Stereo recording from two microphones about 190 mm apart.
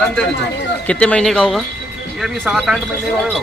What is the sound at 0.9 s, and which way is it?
Speech, 5° left (ahead or behind).